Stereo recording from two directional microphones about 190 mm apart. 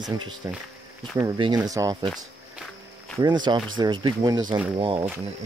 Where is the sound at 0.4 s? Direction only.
15° right (ahead or behind).